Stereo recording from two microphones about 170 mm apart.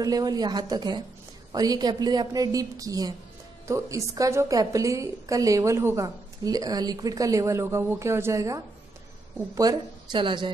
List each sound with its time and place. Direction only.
0.0 s a woman's voice: 20° right (ahead or behind)